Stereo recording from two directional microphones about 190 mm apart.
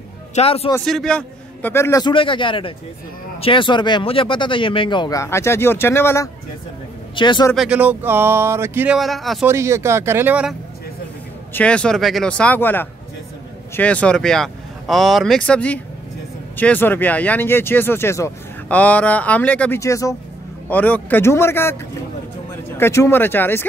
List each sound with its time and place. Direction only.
0.3 s a man's voice: 30° left (ahead or behind)
0.8 s speech: 5° left (ahead or behind)
7.2 s speech: 25° left (ahead or behind)
7.5 s speech: 5° right (ahead or behind)
9.5 s speech: 15° right (ahead or behind)
11.5 s speech: 5° left (ahead or behind)
22.8 s speech: 15° left (ahead or behind)